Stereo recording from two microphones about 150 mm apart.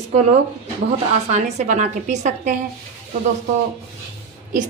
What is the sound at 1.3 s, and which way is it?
A woman's voice, 55° right (ahead or behind).